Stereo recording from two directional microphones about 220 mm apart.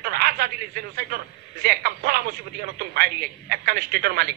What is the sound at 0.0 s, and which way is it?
Telephone, 45° right (ahead or behind).